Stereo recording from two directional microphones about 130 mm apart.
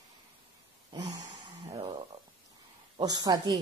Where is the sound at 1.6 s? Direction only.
50° right (ahead or behind).